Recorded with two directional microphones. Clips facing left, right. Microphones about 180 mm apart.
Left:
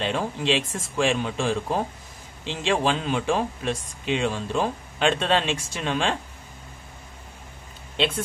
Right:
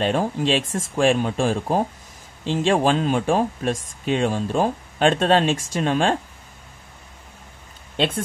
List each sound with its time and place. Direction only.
0.0 s speech: 45° right (ahead or behind)